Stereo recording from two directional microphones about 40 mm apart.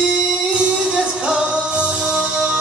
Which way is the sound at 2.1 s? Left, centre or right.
Centre.